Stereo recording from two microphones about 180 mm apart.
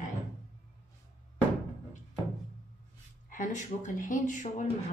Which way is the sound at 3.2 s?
45° left (ahead or behind).